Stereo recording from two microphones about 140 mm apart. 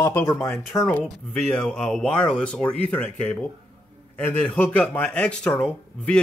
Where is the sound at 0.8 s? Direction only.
5° left (ahead or behind).